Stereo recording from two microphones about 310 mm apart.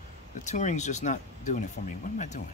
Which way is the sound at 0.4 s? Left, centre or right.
Left.